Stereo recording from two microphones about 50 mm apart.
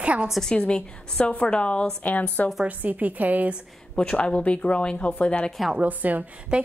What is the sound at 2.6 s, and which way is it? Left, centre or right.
Speech, right.